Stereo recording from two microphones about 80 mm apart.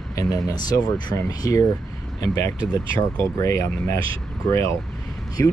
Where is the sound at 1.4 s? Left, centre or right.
Left.